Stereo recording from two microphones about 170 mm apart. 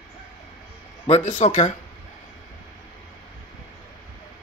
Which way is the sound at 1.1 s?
45° left (ahead or behind).